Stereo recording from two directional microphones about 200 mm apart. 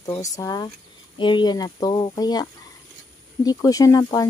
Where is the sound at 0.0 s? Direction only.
15° left (ahead or behind).